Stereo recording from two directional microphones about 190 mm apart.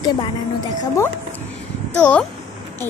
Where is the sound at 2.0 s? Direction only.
10° left (ahead or behind).